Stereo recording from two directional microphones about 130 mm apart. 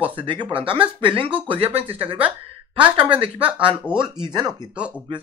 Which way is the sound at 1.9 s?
10° right (ahead or behind).